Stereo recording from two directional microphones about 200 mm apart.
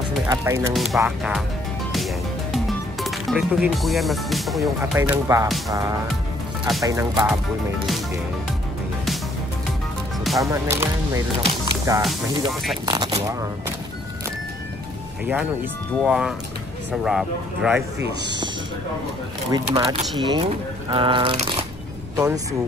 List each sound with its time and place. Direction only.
0.3 s speech: 15° right (ahead or behind)
0.7 s speech: centre (ahead or behind)
1.9 s music: centre (ahead or behind)
4.9 s speech: 15° right (ahead or behind)
10.4 s speech: 15° right (ahead or behind)
16.0 s speech: 5° right (ahead or behind)
19.5 s speech: 20° right (ahead or behind)
22.1 s speech: 15° right (ahead or behind)